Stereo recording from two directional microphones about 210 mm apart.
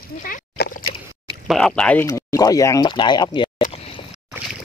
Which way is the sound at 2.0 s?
15° left (ahead or behind).